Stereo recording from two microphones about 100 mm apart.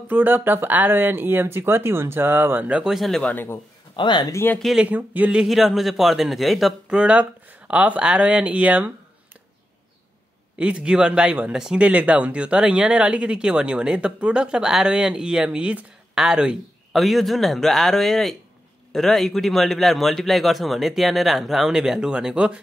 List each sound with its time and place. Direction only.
0.1 s speech: 20° right (ahead or behind); by 3.5 s 15° left (ahead or behind)
3.9 s speech: 50° left (ahead or behind)
4.6 s a man's voice: centre (ahead or behind)
4.8 s speech: 15° right (ahead or behind)
10.6 s a man's voice: 10° right (ahead or behind)